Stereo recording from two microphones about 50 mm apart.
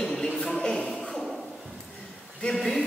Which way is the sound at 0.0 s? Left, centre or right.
Centre.